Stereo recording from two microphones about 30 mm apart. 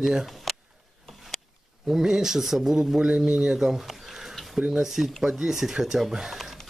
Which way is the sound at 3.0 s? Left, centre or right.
Right.